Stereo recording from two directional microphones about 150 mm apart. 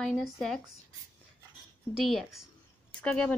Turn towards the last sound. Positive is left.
turn(degrees=10)  # may be behind; listen again after turning